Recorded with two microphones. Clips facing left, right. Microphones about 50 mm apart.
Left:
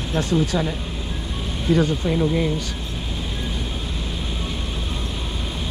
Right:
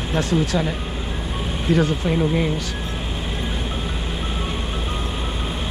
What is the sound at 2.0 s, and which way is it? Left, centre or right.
Speech, right.